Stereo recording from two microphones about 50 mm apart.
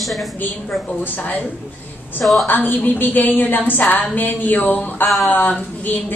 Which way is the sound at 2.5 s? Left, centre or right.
Left.